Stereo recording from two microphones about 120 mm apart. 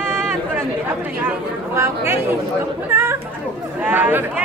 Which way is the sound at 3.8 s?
15° right (ahead or behind).